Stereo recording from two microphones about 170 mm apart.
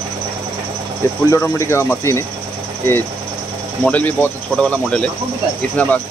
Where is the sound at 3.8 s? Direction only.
10° left (ahead or behind).